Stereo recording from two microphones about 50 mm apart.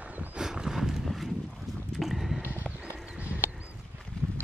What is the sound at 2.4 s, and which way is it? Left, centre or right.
Clip-clop, right.